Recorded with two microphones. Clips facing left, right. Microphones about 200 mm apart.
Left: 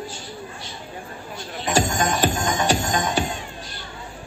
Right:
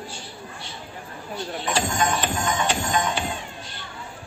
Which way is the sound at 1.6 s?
40° left (ahead or behind).